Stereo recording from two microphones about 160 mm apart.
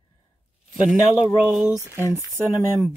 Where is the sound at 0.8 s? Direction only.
5° right (ahead or behind).